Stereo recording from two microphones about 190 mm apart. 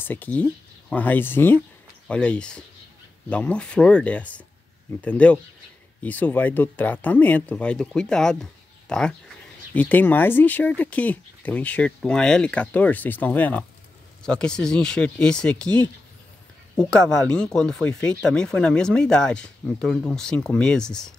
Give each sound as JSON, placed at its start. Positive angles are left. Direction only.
{"t": 0.0, "sound": "speech", "side_deg": 10}